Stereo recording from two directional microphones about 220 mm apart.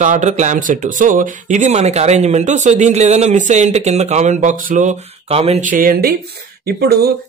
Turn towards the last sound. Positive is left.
turn(degrees=-45)  # may be behind; listen again after turning